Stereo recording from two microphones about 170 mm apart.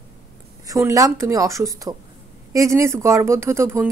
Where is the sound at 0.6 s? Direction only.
20° right (ahead or behind).